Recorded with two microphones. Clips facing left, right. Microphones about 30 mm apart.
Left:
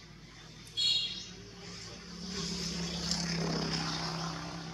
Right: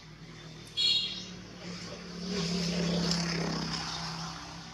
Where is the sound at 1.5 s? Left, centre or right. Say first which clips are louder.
Right 4 dB; right.